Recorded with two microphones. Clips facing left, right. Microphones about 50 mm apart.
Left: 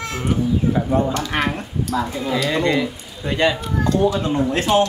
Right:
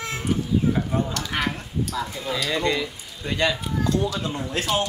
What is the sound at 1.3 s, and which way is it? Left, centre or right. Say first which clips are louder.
Speech: left 4 dB; left.